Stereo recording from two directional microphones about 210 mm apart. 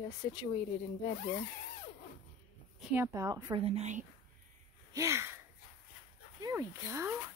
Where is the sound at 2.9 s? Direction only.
15° right (ahead or behind).